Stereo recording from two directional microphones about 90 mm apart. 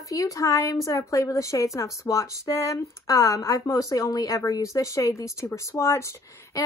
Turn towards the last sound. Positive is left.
turn(degrees=35)  # may be behind; listen again after turning